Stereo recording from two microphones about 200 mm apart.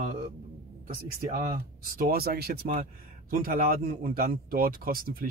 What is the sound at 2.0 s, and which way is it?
Speech, 50° right (ahead or behind).